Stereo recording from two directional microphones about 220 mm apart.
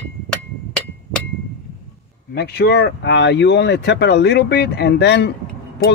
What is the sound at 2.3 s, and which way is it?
Speech, 50° left (ahead or behind).